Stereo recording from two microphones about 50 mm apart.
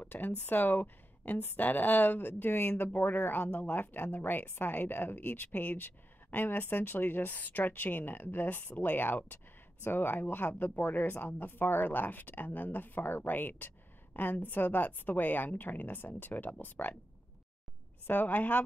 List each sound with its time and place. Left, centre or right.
0.0 s speech: left
18.0 s speech: left